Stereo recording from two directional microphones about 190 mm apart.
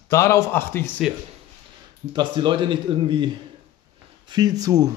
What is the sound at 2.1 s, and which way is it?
A man's voice, 25° right (ahead or behind).